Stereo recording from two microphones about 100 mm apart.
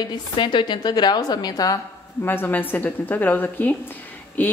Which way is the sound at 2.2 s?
20° left (ahead or behind).